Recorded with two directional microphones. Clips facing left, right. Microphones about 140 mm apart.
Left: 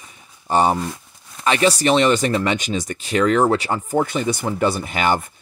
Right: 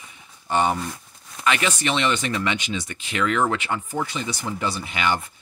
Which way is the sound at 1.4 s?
35° left (ahead or behind).